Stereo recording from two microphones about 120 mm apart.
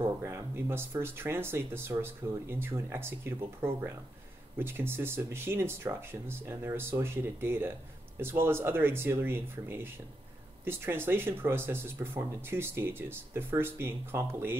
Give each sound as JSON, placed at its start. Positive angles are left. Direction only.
{"t": 0.0, "sound": "speech", "side_deg": -20}